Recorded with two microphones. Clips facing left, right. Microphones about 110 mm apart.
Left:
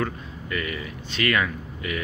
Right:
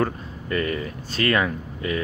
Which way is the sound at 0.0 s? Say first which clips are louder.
Right 4 dB; 35° right (ahead or behind).